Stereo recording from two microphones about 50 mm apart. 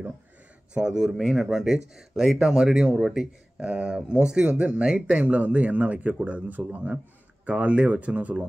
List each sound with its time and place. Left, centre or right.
0.7 s speech: centre
5.2 s a man's voice: right